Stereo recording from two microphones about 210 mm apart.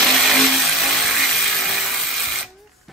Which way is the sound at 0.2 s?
Centre (ahead or behind).